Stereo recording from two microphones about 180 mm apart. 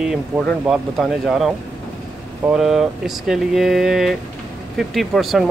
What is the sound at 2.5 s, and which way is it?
Speech, centre (ahead or behind).